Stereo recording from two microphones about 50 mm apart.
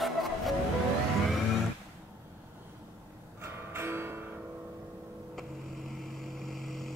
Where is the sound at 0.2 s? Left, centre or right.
Centre.